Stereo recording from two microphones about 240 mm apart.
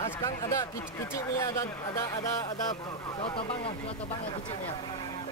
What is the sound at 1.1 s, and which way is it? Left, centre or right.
Speech, centre.